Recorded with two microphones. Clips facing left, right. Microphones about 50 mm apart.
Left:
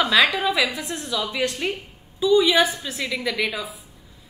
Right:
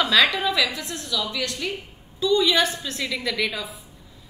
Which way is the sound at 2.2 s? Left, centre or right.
Centre.